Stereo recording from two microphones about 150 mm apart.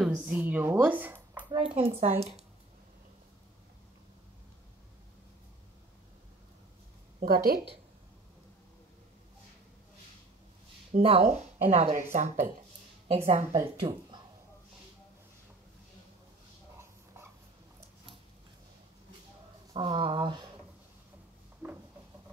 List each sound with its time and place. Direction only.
0.0 s a woman's voice: 5° right (ahead or behind)
1.8 s speech: 40° right (ahead or behind)
7.2 s a woman's voice: 90° right
10.9 s speech: 40° right (ahead or behind)
13.7 s speech: 35° right (ahead or behind)
19.7 s speech: 35° right (ahead or behind)